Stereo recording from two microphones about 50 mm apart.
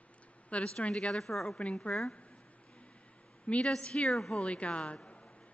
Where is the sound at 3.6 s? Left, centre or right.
Centre.